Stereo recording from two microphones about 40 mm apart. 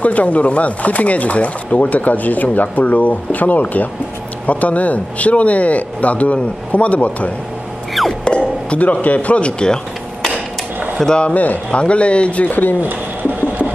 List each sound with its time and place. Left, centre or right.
0.0 s speech: left
8.0 s a sound: centre
8.6 s speech: left
11.1 s speech: left
11.3 s speech: left
11.7 s speech: left
12.8 s sewing machine: right